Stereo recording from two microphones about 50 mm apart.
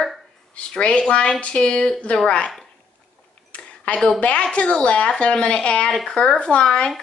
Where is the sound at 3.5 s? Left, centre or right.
Left.